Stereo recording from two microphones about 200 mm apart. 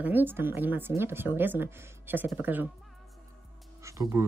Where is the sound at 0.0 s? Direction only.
10° right (ahead or behind).